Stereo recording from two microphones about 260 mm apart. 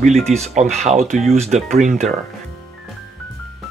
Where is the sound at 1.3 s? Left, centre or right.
Right.